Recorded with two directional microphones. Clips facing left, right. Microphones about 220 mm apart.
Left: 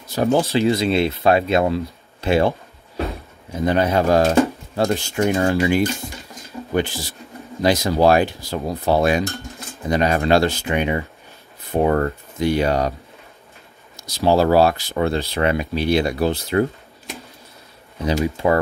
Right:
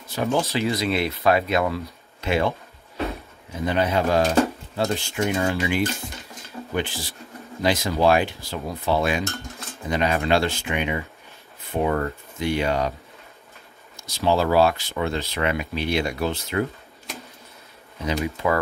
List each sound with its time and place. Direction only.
0.1 s speech: 40° left (ahead or behind)
3.5 s speech: 45° left (ahead or behind)
13.9 s speech: 35° left (ahead or behind)
18.0 s speech: 30° left (ahead or behind)